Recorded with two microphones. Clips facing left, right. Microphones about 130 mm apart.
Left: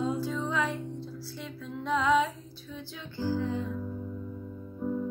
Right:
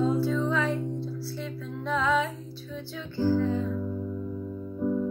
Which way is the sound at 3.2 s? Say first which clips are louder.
Right 6 dB; 55° right (ahead or behind).